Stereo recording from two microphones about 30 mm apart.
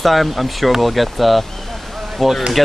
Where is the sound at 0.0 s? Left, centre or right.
Centre.